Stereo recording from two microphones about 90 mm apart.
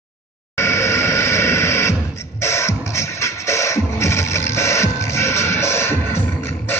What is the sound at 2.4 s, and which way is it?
Music, 30° left (ahead or behind).